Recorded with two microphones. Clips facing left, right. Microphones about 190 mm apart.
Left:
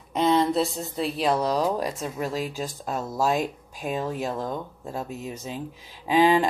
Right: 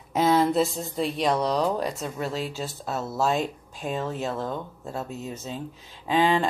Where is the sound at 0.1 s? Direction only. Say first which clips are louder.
Even; 5° right (ahead or behind).